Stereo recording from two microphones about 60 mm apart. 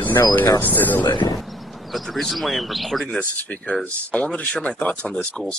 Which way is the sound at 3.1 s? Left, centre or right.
Centre.